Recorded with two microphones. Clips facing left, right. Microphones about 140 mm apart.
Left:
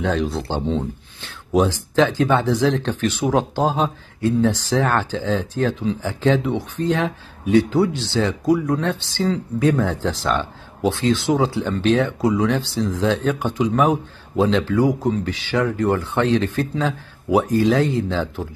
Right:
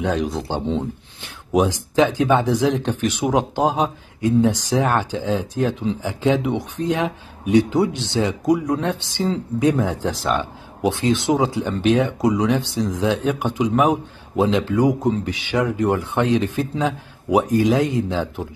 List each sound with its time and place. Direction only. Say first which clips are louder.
0.0 s speech: even; 10° right (ahead or behind)
10.9 s speech: even; 20° right (ahead or behind)